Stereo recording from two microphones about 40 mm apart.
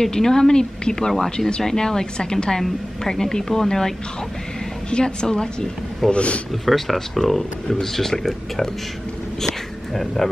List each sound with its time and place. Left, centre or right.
0.0 s a woman's voice: centre
4.9 s a woman's voice: left
6.6 s a woman's voice: centre
9.9 s speech: centre